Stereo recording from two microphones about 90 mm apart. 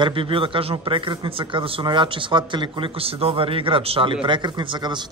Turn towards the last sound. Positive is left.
turn(degrees=-55)  # may be behind; listen again after turning